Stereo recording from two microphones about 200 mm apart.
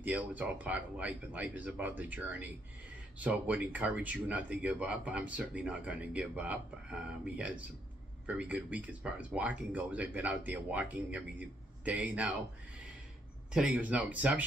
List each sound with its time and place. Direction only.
0.0 s speech: 10° right (ahead or behind)
13.5 s speech: 5° right (ahead or behind)